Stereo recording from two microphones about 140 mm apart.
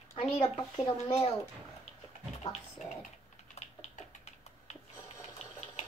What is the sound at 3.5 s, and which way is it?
Typing, 50° left (ahead or behind).